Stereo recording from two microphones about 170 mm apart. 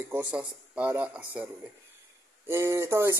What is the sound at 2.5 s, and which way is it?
Speech, 15° right (ahead or behind).